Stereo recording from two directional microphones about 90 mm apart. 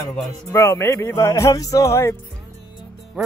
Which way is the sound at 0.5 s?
30° left (ahead or behind).